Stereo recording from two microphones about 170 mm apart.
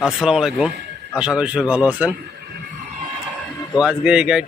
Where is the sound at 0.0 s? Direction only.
Centre (ahead or behind).